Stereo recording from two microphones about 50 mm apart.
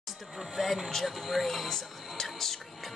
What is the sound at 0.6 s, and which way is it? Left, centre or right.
Speech, centre.